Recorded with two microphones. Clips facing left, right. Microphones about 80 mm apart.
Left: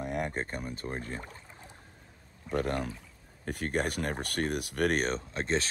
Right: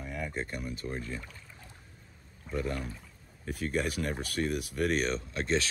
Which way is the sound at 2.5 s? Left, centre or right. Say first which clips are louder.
Left 3 dB; left.